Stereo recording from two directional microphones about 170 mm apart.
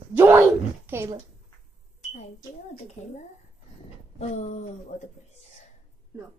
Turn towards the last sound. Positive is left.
turn(degrees=40)  # may be behind; listen again after turning